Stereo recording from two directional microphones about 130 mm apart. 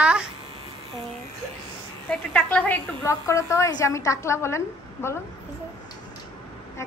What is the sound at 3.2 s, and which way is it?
A woman's voice, 25° left (ahead or behind).